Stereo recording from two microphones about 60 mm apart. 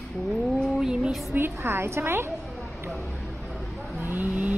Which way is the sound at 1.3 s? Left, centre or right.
Right.